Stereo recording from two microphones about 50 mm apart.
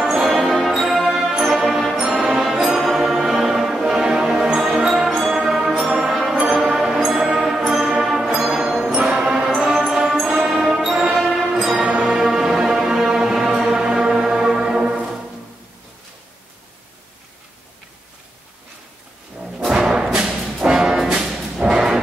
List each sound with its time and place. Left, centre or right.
0.2 s music: centre
8.8 s music: right
9.6 s orchestra: centre
11.1 s music: centre
19.7 s music: centre